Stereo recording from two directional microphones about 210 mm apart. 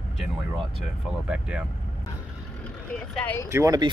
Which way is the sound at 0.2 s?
Centre (ahead or behind).